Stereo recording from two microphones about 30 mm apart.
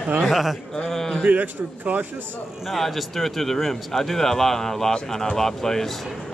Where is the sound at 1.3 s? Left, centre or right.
Right.